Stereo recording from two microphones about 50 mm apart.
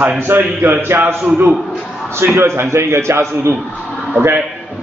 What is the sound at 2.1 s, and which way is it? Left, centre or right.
A man's voice, right.